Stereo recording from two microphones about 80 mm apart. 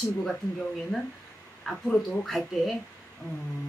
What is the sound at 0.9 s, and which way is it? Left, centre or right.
Speech, centre.